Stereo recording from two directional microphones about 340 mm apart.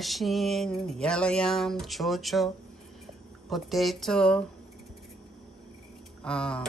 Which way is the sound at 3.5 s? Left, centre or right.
Centre.